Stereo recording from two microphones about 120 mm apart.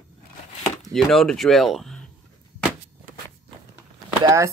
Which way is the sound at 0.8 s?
Centre (ahead or behind).